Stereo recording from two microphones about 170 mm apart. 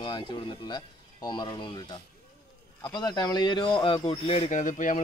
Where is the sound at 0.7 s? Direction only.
25° left (ahead or behind).